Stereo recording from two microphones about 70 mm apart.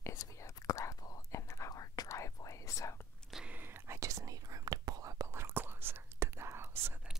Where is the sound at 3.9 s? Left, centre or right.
Right.